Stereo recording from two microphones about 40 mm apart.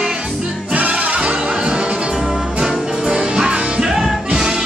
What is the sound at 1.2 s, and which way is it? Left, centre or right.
Music, right.